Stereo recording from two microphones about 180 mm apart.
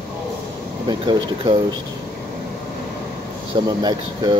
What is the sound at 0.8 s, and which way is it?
Speech, 25° right (ahead or behind).